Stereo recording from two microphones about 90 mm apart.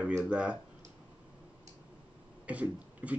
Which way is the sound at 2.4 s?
15° right (ahead or behind).